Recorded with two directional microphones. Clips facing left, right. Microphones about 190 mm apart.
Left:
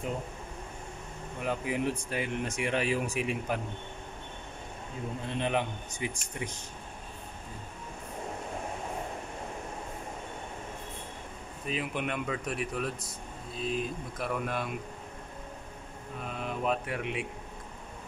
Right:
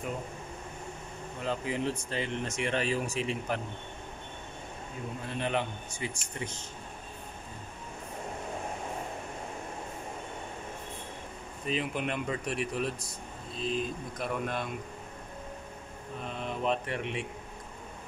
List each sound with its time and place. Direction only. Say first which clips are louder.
1.4 s speech: left 1 dB; 15° left (ahead or behind)
5.3 s speech: left 1 dB; 15° left (ahead or behind)
11.6 s speech: right 1 dB; 5° left (ahead or behind)
16.3 s speech: even; 5° left (ahead or behind)